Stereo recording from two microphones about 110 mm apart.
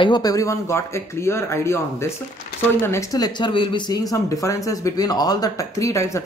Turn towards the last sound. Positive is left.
turn(degrees=25)  # may be behind; listen again after turning